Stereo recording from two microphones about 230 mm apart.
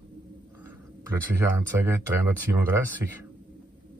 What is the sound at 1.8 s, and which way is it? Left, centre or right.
Speech, centre.